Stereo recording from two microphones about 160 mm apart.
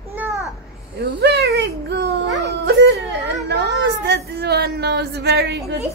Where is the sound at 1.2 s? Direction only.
90° right.